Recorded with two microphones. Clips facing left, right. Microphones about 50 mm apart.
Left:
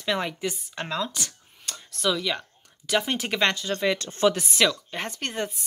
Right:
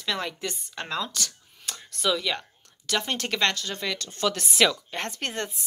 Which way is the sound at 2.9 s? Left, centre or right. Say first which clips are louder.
Left 2 dB; centre.